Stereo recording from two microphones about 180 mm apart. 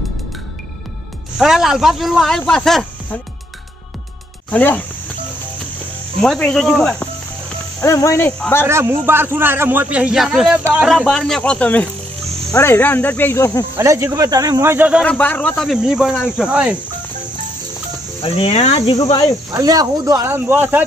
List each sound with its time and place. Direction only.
1.4 s speech: centre (ahead or behind)
4.5 s speech: 10° left (ahead or behind)
6.2 s speech: centre (ahead or behind)
7.8 s speech: 15° left (ahead or behind)
8.6 s a man's voice: 15° right (ahead or behind); by 13.7 s 15° left (ahead or behind)
13.7 s a man's voice: 15° right (ahead or behind)
15.0 s a man's voice: 5° left (ahead or behind)
18.2 s speech: 35° left (ahead or behind)
19.5 s a man's voice: 20° right (ahead or behind)